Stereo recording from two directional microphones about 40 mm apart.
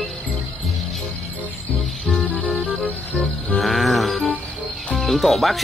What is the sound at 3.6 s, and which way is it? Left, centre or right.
Music, centre.